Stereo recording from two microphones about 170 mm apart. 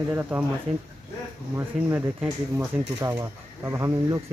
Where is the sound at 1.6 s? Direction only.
15° right (ahead or behind).